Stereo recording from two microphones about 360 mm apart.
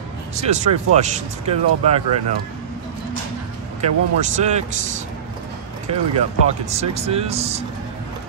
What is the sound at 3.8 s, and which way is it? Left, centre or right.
Speech, centre.